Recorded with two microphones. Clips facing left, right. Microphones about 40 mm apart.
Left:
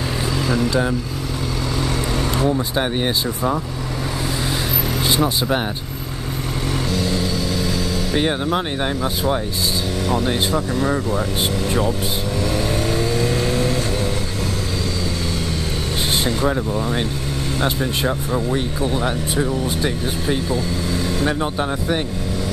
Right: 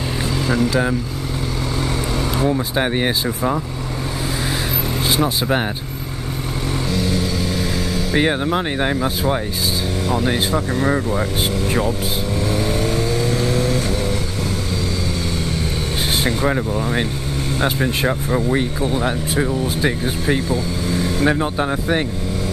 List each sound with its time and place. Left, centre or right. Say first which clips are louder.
0.6 s speech: right 2 dB; centre
2.1 s speech: right 1 dB; centre
5.1 s speech: right 1 dB; centre
7.5 s vehicle: even; right
8.8 s speech: right 2 dB; centre
10.7 s speech: right 1 dB; right
13.2 s vehicle: even; centre
16.4 s speech: right 1 dB; right
18.6 s speech: right 1 dB; centre
20.9 s vehicle: right 4 dB; right